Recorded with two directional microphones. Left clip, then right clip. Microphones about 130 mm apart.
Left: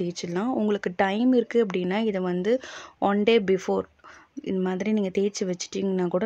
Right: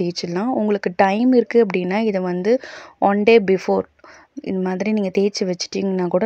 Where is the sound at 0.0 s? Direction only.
35° right (ahead or behind).